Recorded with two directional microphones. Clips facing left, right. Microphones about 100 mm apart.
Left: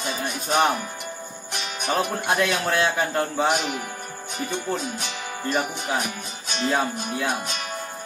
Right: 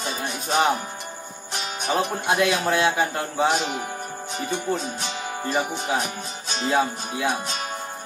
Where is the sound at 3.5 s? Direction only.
30° right (ahead or behind).